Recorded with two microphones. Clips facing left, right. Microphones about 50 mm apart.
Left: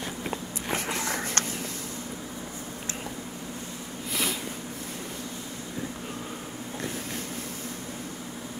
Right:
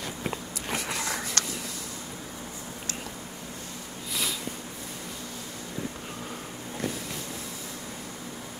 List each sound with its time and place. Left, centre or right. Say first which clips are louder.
0.7 s walk: left 1 dB; left
4.1 s snort: left 2 dB; left